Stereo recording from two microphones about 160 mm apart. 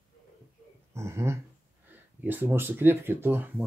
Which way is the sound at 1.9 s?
10° right (ahead or behind).